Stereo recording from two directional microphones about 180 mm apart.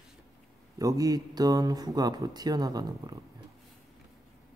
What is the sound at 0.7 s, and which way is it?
Speech, 20° right (ahead or behind).